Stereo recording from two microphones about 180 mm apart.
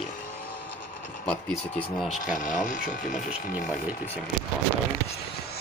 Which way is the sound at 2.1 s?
45° left (ahead or behind).